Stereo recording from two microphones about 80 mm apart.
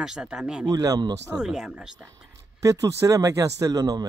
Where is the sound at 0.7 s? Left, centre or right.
Right.